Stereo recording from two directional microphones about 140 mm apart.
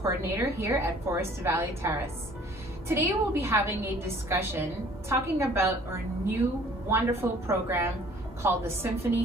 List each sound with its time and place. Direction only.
0.0 s a woman's voice: 20° right (ahead or behind)